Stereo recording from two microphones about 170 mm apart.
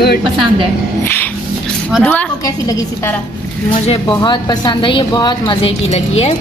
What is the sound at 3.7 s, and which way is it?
Speech, 30° left (ahead or behind).